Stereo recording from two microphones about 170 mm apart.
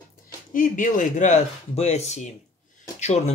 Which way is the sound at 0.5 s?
50° left (ahead or behind).